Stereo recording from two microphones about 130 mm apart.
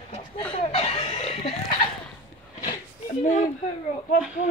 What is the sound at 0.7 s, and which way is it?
Chicken, 50° left (ahead or behind).